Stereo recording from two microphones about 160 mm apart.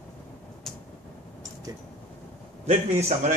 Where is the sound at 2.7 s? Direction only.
45° right (ahead or behind).